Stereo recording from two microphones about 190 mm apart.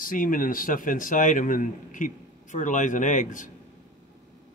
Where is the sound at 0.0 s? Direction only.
45° left (ahead or behind).